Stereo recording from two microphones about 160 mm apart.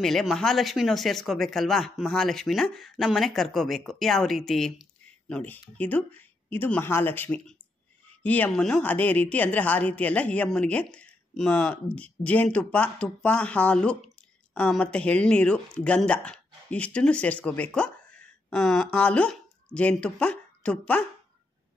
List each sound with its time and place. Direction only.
0.0 s a woman's voice: centre (ahead or behind)